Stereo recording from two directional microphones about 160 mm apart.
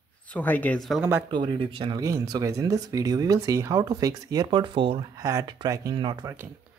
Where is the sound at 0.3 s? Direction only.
10° left (ahead or behind).